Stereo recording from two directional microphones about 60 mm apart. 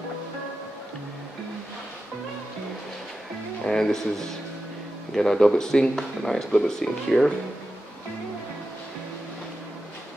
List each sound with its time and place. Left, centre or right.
3.6 s speech: centre